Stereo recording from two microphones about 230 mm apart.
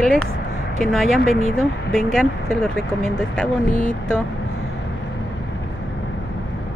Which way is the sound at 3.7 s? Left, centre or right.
Left.